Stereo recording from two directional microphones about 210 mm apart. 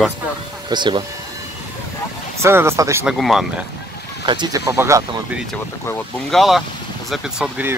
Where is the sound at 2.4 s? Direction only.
10° right (ahead or behind).